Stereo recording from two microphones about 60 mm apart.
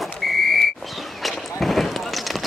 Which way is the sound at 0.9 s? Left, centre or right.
Centre.